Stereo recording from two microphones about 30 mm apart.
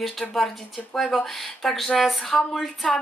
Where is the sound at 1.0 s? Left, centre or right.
Centre.